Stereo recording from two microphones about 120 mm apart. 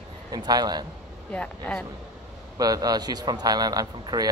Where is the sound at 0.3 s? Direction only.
35° right (ahead or behind).